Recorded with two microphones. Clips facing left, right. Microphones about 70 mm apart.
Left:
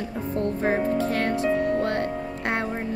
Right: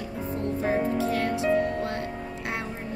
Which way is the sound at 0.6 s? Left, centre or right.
Left.